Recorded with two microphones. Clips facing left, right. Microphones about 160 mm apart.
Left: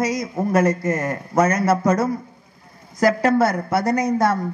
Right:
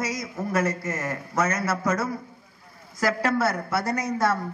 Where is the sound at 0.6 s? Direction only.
40° left (ahead or behind).